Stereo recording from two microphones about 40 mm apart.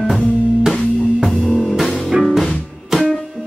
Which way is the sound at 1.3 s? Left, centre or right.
Centre.